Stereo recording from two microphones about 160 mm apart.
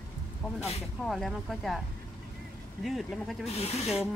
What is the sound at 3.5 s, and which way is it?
Speech, 40° left (ahead or behind).